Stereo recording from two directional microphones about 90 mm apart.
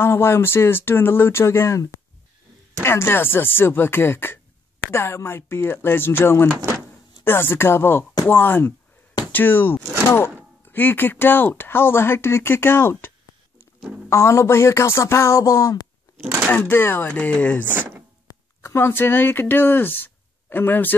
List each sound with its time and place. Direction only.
0.0 s speech: 25° left (ahead or behind)
16.2 s speech: 25° right (ahead or behind)
16.5 s speech: 25° left (ahead or behind)
18.3 s speech: 35° left (ahead or behind)